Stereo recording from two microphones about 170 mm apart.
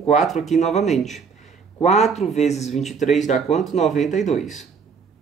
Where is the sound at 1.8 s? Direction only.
40° left (ahead or behind).